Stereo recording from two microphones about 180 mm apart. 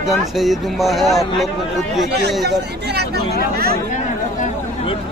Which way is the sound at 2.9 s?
65° right (ahead or behind).